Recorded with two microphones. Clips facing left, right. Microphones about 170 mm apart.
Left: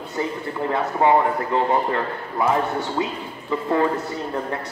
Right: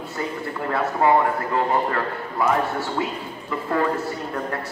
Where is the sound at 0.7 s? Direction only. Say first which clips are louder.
Left 1 dB; 20° left (ahead or behind).